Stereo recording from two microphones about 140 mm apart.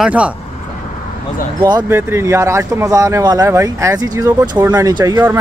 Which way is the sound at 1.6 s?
20° right (ahead or behind).